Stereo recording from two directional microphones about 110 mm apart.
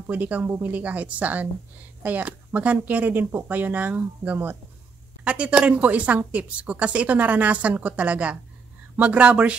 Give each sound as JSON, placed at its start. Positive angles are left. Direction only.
{"t": 0.0, "sound": "a woman's voice", "side_deg": -15}